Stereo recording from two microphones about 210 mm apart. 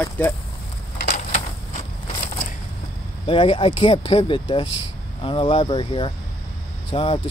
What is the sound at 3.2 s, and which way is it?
Speech, 25° left (ahead or behind).